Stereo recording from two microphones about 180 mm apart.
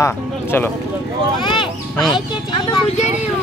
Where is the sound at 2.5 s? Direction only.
25° left (ahead or behind).